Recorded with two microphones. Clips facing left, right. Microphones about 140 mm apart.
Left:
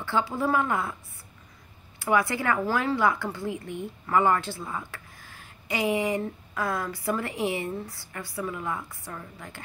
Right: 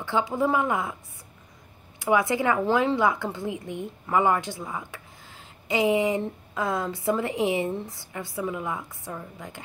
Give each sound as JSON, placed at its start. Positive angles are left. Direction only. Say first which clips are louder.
{"t": 0.0, "sound": "a woman's voice", "louder": "right 2 dB", "side_deg": -15}
{"t": 2.0, "sound": "speech", "louder": "right 2 dB", "side_deg": -15}